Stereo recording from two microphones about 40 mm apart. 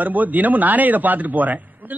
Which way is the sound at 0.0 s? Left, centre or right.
Right.